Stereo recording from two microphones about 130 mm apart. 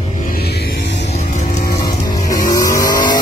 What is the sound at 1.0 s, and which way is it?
Music, 60° left (ahead or behind).